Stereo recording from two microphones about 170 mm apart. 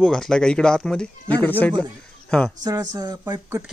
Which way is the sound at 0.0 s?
5° left (ahead or behind).